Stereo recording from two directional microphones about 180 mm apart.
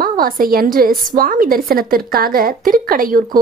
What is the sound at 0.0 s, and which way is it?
A woman's voice, 55° right (ahead or behind).